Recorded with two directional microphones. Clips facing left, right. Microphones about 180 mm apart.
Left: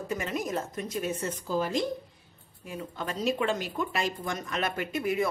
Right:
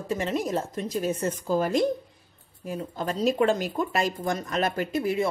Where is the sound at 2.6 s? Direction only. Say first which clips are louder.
Right 5 dB; 40° right (ahead or behind).